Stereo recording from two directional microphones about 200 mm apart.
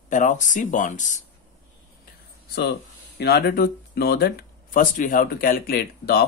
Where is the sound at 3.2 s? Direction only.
55° left (ahead or behind).